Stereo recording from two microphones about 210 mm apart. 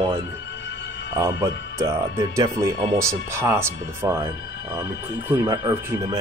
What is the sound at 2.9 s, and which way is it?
Speech, 10° right (ahead or behind).